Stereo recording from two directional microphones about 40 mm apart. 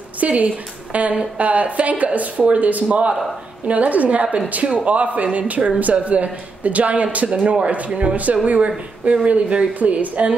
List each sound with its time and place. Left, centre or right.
0.2 s a woman's voice: right
7.2 s a man's voice: right
7.6 s speech: right